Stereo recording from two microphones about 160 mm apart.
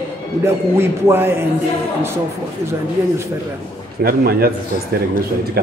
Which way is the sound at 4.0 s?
70° right (ahead or behind).